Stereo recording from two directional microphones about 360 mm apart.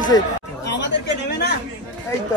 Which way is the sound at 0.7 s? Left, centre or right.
Left.